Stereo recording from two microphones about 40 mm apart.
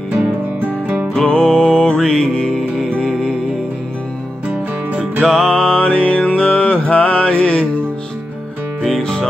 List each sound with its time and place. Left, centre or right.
0.6 s music: right
1.1 s music: left
4.5 s music: right
5.2 s music: centre
9.0 s music: centre